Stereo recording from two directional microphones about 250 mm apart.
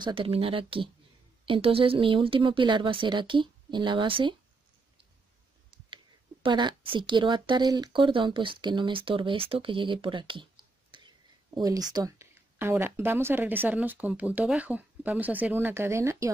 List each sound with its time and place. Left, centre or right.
0.0 s speech: right
6.4 s a woman's voice: centre